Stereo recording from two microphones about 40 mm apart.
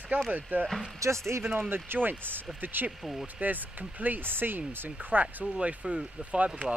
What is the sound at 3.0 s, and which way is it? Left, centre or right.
Speech, centre.